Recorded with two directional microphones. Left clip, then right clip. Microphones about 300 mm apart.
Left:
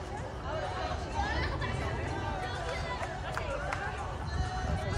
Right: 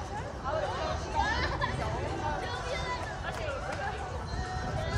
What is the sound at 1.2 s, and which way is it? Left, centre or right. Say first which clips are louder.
Hubbub: right 5 dB; centre.